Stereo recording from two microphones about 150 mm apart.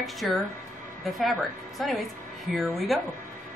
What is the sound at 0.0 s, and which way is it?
Hair dryer, centre (ahead or behind).